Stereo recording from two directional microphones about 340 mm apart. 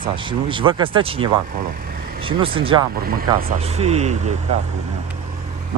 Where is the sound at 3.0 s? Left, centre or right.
Right.